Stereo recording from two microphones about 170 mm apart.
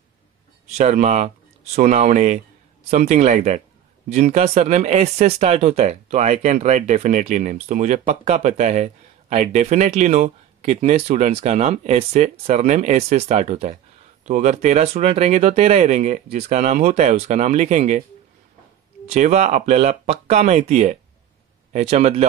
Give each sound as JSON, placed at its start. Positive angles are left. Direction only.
{"t": 0.7, "sound": "speech", "side_deg": -45}
{"t": 19.0, "sound": "speech", "side_deg": -45}